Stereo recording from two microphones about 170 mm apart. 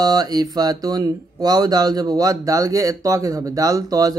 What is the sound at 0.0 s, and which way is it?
Speech, 25° right (ahead or behind).